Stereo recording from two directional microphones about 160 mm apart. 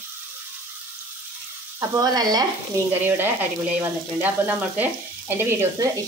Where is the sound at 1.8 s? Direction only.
25° right (ahead or behind).